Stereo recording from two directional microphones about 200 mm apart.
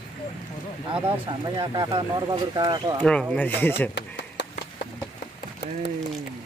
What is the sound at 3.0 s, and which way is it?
Speech, 5° left (ahead or behind).